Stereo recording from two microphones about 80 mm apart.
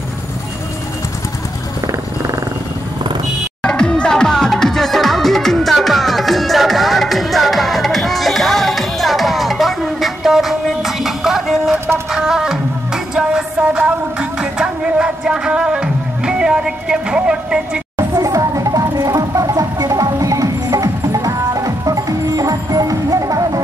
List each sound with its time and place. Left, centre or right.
3.6 s music: centre
17.9 s music: right